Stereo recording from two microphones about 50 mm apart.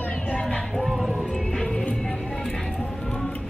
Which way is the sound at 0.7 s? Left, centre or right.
Centre.